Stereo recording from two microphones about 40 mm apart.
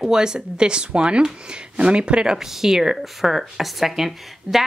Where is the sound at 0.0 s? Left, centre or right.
Centre.